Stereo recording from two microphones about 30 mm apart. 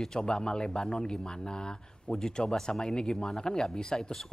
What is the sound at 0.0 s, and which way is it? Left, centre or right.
A woman's voice, left.